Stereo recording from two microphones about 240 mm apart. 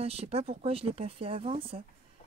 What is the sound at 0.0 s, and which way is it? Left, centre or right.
Speech, right.